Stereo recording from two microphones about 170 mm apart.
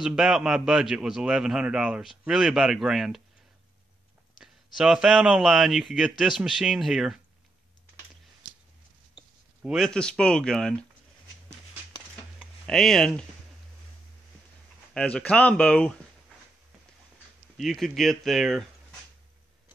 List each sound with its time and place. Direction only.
0.0 s a man's voice: 5° right (ahead or behind)
4.7 s a man's voice: 5° right (ahead or behind)
9.6 s a man's voice: centre (ahead or behind)
12.4 s a sound: centre (ahead or behind)
15.0 s speech: 5° left (ahead or behind)
17.6 s speech: centre (ahead or behind)